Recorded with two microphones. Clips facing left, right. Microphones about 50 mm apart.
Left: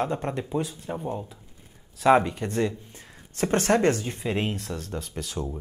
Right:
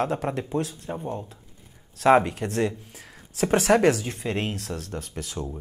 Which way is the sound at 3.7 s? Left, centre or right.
Right.